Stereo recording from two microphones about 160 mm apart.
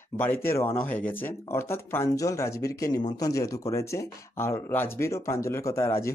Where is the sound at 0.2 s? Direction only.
15° left (ahead or behind).